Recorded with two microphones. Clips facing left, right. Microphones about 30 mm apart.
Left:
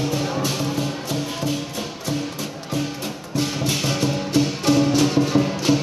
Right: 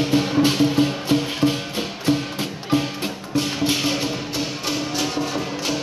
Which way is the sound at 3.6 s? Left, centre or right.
Centre.